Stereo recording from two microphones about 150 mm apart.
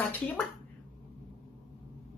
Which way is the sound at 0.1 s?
10° left (ahead or behind).